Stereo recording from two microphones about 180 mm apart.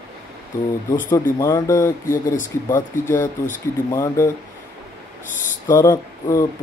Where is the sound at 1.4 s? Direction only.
15° left (ahead or behind).